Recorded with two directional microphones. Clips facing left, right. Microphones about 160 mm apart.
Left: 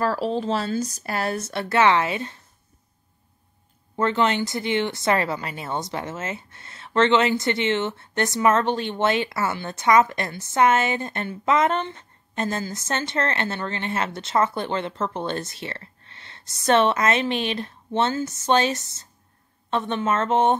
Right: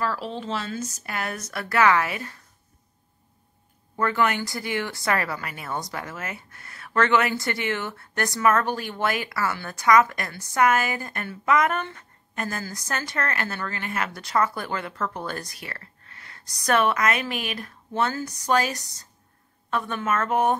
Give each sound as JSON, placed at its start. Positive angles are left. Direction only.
{"t": 0.0, "sound": "a woman's voice", "side_deg": 40}
{"t": 3.9, "sound": "speech", "side_deg": 25}